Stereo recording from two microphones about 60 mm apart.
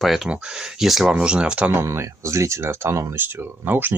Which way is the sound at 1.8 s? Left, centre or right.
Right.